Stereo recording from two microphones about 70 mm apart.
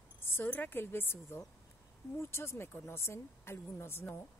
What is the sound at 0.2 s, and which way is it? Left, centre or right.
Speech, left.